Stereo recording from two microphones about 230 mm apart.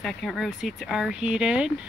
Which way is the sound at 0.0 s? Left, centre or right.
Centre.